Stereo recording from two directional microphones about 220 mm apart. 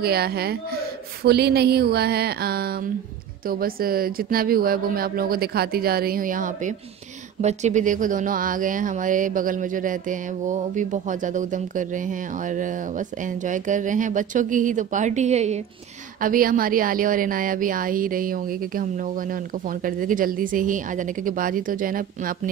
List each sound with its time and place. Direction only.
0.0 s a woman's voice: 45° right (ahead or behind)